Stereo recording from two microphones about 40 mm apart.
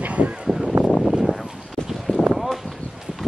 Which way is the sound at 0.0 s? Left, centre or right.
Right.